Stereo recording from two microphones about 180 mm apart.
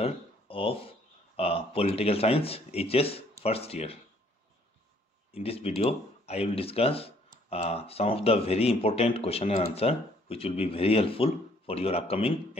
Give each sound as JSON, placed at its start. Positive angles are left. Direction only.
{"t": 0.0, "sound": "speech", "side_deg": 30}
{"t": 5.3, "sound": "speech", "side_deg": 35}